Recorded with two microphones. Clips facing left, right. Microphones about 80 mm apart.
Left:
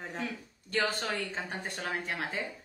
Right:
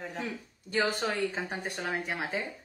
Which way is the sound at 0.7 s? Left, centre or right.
Centre.